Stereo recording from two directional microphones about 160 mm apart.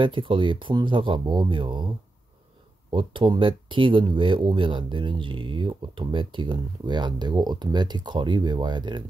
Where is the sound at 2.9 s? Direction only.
30° right (ahead or behind).